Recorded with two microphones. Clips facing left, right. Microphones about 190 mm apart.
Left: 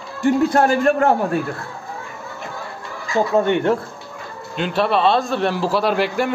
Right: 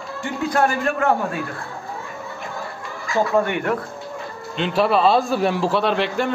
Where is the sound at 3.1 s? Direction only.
25° left (ahead or behind).